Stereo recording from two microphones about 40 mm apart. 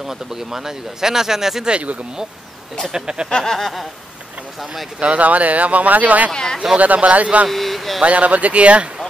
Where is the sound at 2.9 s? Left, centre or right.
Right.